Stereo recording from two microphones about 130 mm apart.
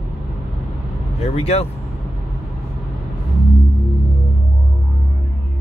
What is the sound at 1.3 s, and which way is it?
Speech, 55° left (ahead or behind).